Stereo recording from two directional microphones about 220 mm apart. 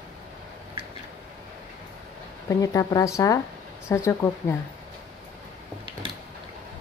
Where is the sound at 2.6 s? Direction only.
15° left (ahead or behind).